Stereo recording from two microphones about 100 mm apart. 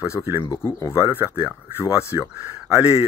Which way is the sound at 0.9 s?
20° right (ahead or behind).